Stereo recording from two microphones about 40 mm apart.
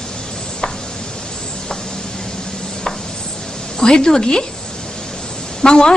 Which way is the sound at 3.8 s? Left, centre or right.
Centre.